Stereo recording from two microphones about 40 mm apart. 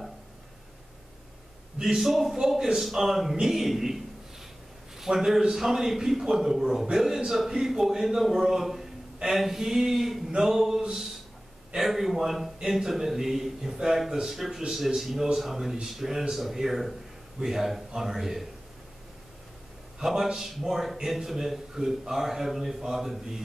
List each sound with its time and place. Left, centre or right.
2.0 s a man's voice: centre
10.8 s a sound: centre
11.7 s a man's voice: centre
20.0 s a man's voice: centre